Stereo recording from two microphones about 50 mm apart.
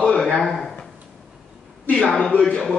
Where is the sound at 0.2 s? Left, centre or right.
Centre.